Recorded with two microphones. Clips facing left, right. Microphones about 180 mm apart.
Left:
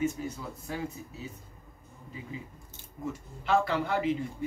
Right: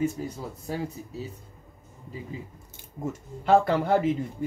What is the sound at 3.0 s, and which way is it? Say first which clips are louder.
Speech: right 4 dB; 45° right (ahead or behind).